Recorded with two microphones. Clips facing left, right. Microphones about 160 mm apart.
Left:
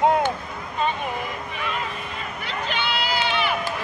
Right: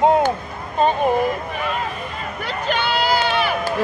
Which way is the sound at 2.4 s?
45° right (ahead or behind).